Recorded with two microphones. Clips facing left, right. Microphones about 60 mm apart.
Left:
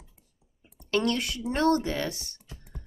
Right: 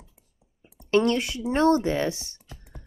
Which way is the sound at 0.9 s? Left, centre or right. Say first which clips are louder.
Right 5 dB; right.